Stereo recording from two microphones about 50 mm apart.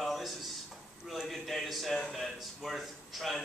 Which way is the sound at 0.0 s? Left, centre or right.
Centre.